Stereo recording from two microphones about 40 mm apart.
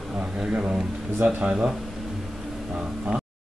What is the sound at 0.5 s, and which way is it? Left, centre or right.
Speech, right.